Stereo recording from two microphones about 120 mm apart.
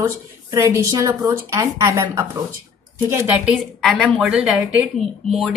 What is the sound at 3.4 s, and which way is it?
Speech, centre (ahead or behind).